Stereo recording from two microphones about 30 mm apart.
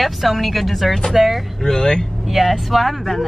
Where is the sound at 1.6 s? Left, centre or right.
Left.